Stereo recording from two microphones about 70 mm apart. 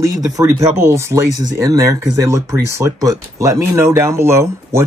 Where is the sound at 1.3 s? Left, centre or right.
Right.